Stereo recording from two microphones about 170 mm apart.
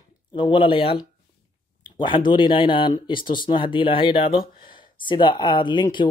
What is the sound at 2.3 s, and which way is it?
Speech, 30° left (ahead or behind).